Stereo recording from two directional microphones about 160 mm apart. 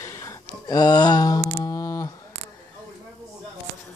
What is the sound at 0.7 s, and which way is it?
Music, 25° left (ahead or behind).